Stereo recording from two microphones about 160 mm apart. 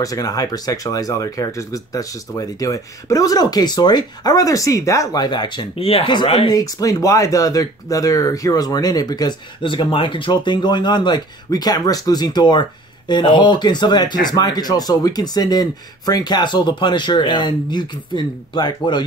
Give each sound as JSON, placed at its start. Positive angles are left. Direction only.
{"t": 0.0, "sound": "speech", "side_deg": 20}